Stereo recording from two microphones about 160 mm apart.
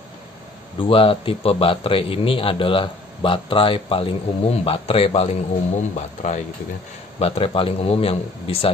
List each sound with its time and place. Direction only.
0.7 s a man's voice: 35° left (ahead or behind)
7.2 s a man's voice: 35° left (ahead or behind)